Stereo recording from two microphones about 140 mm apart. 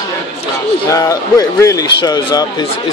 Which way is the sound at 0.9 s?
25° left (ahead or behind).